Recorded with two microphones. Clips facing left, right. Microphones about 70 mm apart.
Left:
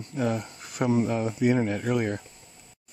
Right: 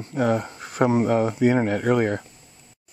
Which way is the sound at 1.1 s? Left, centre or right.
Right.